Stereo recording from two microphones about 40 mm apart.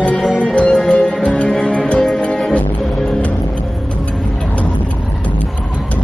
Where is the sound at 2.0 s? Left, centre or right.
Centre.